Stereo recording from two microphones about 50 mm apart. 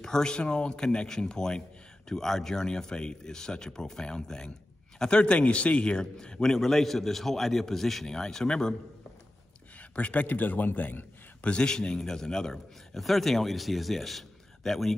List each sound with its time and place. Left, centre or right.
0.0 s a man's voice: centre
9.8 s a man's voice: left
11.4 s a man's voice: centre